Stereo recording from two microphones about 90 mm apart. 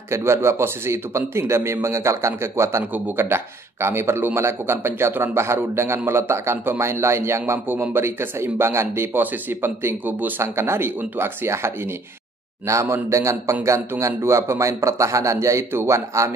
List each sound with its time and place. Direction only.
0.1 s a man's voice: 30° right (ahead or behind)